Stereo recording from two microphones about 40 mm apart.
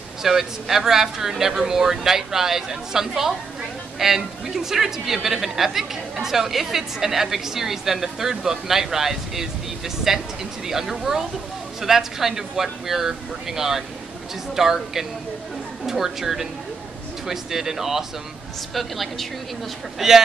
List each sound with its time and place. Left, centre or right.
0.2 s a woman's voice: centre
18.8 s a woman's voice: centre
20.0 s a woman's voice: centre